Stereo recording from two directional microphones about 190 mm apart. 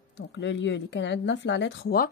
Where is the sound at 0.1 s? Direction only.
70° left (ahead or behind).